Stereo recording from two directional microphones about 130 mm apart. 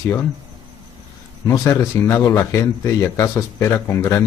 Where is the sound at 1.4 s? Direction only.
20° left (ahead or behind).